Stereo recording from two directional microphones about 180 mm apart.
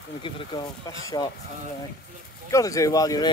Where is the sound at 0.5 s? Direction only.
20° left (ahead or behind).